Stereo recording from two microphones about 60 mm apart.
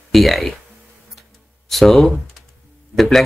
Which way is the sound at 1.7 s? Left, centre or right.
Centre.